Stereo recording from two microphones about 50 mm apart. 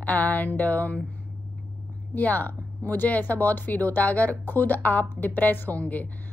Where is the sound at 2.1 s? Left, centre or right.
Left.